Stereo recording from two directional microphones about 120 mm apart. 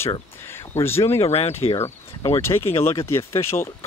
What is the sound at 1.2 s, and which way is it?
Speech, 60° left (ahead or behind).